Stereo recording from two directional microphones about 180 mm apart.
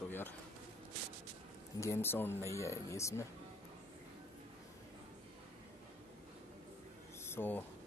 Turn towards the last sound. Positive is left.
turn(degrees=10)  # may be behind; listen again after turning